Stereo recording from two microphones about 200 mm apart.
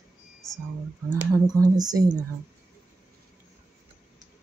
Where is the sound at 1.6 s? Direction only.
20° right (ahead or behind).